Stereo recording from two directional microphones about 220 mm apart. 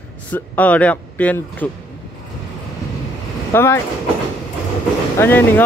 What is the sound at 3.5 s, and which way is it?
Speech, 10° left (ahead or behind).